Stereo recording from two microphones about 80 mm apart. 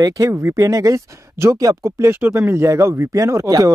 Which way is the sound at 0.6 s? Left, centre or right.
Right.